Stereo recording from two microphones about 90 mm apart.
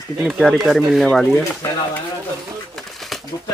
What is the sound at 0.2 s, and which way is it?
Speech, centre (ahead or behind).